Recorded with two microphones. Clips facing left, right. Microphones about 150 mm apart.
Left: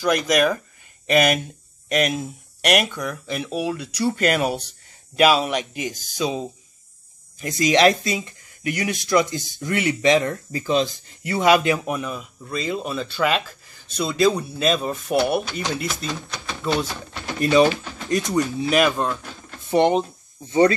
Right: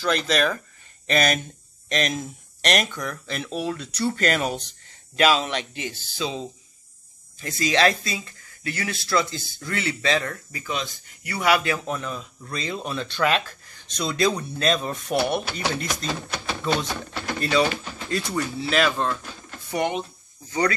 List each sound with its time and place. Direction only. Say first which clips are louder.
0.0 s speech: left 4 dB; 15° left (ahead or behind)
16.4 s typewriter: left 2 dB; 5° left (ahead or behind)
16.9 s speech: right 2 dB; 15° left (ahead or behind)
19.7 s speech: left 8 dB; 35° left (ahead or behind)